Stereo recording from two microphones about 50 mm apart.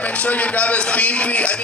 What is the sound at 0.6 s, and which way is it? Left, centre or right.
Speech, left.